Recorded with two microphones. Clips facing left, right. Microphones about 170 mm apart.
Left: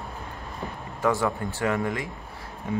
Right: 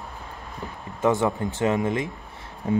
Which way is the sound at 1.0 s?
20° right (ahead or behind).